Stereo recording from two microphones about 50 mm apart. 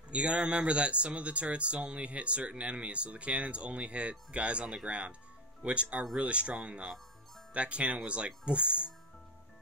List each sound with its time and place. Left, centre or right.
0.1 s speech: right